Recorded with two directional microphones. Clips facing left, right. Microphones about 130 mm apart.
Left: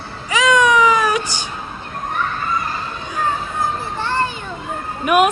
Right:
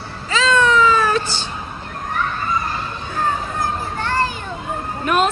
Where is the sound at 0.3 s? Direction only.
15° left (ahead or behind).